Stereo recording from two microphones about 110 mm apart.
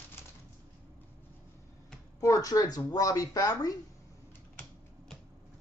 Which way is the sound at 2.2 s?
30° left (ahead or behind).